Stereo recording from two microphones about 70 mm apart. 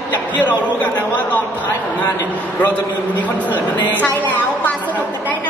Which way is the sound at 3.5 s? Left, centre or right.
Left.